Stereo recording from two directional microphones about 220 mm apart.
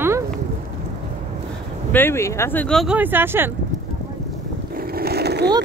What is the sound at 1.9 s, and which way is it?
Speech, 10° left (ahead or behind).